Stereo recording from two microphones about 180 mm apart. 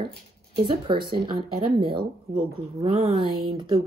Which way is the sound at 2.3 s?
55° right (ahead or behind).